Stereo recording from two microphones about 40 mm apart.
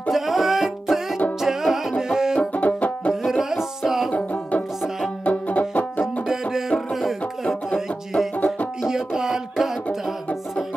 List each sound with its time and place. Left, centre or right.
0.1 s music: centre
2.3 s music: left
3.3 s music: centre
4.1 s music: left
7.4 s music: centre
8.8 s music: centre